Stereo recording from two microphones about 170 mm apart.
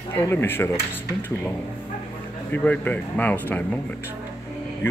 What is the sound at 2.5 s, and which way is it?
Speech, 10° left (ahead or behind).